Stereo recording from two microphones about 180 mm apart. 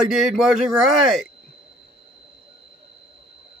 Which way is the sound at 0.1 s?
5° right (ahead or behind).